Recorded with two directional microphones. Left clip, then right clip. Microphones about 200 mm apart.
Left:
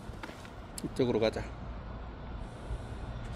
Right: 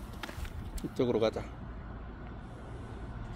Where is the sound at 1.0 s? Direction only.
5° left (ahead or behind).